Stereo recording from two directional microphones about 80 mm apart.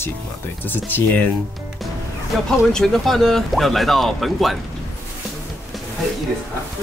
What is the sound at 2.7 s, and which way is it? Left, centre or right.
Speech, centre.